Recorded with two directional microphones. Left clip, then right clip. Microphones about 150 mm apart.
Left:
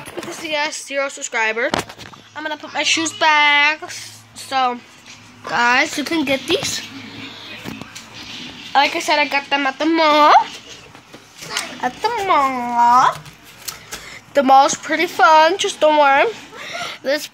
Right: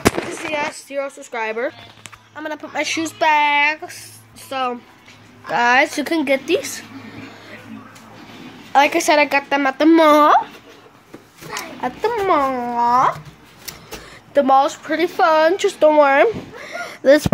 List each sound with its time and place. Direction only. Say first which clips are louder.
0.5 s a woman's voice: left 5 dB; centre (ahead or behind); by 3.0 s 20° right (ahead or behind)
3.0 s speech: even; 5° right (ahead or behind)
5.5 s speech: right 1 dB; 25° right (ahead or behind)
5.9 s a woman's voice: right 1 dB; 10° right (ahead or behind)
8.9 s speech: right 2 dB; 30° right (ahead or behind)
10.1 s a woman's voice: left 1 dB; 10° right (ahead or behind)
12.0 s speech: left 1 dB; 30° right (ahead or behind)
14.3 s speech: left 2 dB; 5° right (ahead or behind)
14.8 s a woman's voice: left 2 dB; 15° right (ahead or behind)
15.5 s speech: right 1 dB; 30° right (ahead or behind)
16.0 s a sound: right 1 dB; 30° right (ahead or behind)
17.0 s speech: right 9 dB; 45° right (ahead or behind)